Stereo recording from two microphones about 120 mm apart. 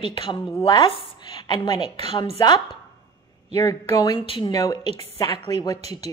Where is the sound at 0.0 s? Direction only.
45° left (ahead or behind).